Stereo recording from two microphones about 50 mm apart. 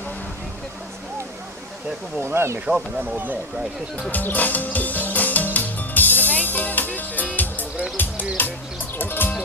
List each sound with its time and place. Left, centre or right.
2.1 s speech: right
2.6 s speech: right
4.1 s music: left